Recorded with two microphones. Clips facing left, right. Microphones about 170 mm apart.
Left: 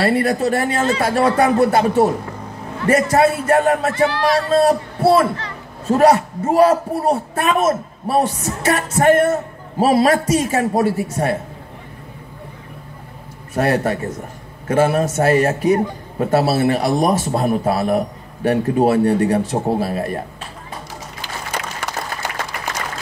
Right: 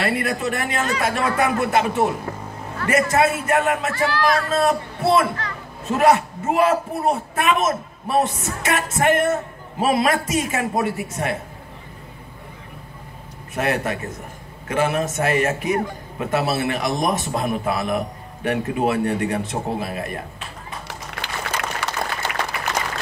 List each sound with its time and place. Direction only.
0.0 s a man's voice: 35° left (ahead or behind)
3.9 s a man's voice: 20° left (ahead or behind)
13.6 s a man's voice: 35° left (ahead or behind)